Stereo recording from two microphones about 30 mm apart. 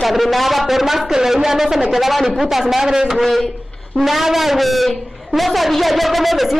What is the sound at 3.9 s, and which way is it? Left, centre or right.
A man's voice, centre.